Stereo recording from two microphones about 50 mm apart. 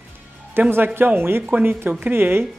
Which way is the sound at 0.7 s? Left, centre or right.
Right.